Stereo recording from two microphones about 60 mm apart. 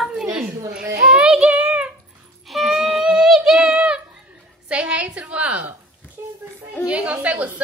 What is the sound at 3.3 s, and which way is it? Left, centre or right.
Child singing, centre.